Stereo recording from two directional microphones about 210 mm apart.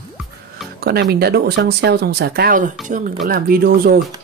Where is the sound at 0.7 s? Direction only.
50° right (ahead or behind).